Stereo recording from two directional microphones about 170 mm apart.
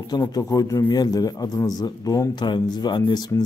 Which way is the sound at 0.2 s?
20° left (ahead or behind).